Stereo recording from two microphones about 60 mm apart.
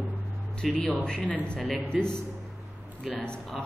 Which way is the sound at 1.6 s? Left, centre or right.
Centre.